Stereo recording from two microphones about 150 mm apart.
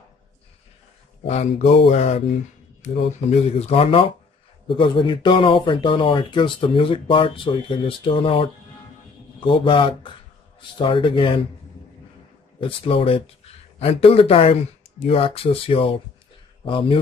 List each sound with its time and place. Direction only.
1.2 s speech: 50° left (ahead or behind)
12.5 s speech: 35° left (ahead or behind)